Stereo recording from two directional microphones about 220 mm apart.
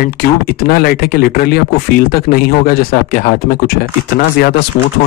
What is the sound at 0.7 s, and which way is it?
Speech, 40° left (ahead or behind).